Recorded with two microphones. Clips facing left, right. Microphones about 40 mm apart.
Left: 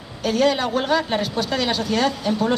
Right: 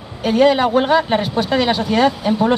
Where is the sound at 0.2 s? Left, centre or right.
Right.